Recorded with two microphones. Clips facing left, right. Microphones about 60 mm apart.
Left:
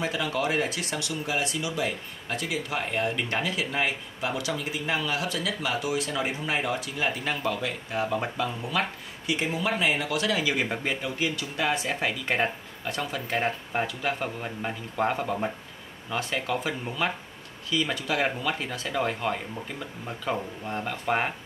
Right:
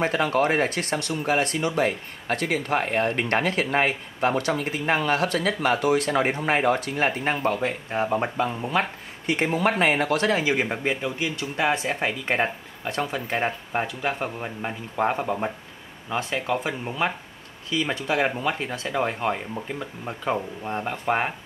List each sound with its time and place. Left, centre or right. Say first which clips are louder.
0.0 s speech: right 6 dB; right; by 21.3 s centre